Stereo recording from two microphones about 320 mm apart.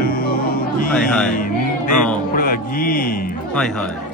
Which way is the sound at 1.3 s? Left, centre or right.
Left.